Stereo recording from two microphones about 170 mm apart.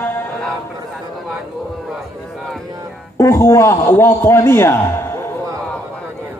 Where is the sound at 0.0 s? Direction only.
10° left (ahead or behind).